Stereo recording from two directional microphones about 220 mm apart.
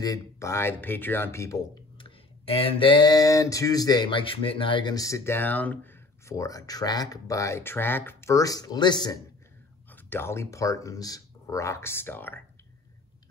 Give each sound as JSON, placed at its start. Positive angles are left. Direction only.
{"t": 0.0, "sound": "speech", "side_deg": 15}
{"t": 2.0, "sound": "a sound", "side_deg": 25}
{"t": 6.2, "sound": "speech", "side_deg": 15}